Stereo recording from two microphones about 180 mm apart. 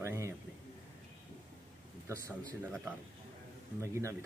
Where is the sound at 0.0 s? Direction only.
15° right (ahead or behind).